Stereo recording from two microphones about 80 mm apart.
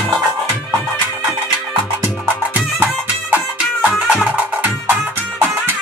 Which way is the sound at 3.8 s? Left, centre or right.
Centre.